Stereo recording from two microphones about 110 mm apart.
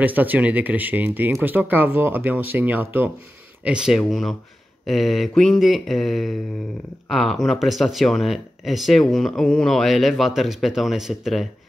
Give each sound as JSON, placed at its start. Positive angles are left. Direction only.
{"t": 0.0, "sound": "speech", "side_deg": -15}
{"t": 3.6, "sound": "speech", "side_deg": -5}